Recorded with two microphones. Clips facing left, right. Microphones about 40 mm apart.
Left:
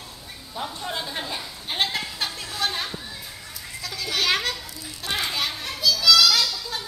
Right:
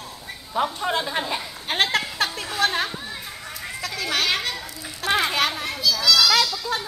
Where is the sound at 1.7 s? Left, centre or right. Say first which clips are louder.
Right 4 dB; right.